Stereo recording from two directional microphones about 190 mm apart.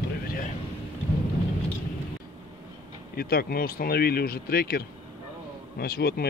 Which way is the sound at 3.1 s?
55° left (ahead or behind).